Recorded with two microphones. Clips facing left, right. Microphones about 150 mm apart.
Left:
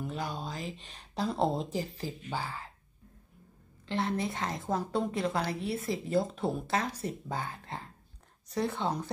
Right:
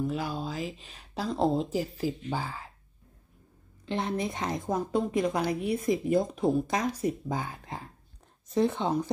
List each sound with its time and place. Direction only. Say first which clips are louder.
0.0 s a woman's voice: right 5 dB; centre (ahead or behind)
3.8 s a woman's voice: right 1 dB; 20° right (ahead or behind)